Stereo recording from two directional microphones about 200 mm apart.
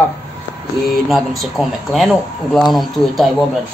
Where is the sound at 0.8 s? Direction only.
Centre (ahead or behind).